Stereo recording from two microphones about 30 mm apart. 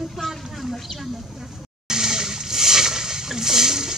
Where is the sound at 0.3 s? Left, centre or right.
Centre.